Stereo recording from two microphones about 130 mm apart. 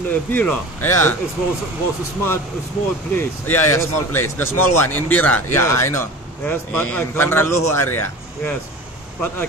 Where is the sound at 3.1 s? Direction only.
15° left (ahead or behind).